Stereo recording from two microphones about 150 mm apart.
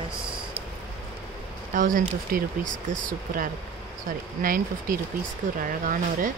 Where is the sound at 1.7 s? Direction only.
65° right (ahead or behind).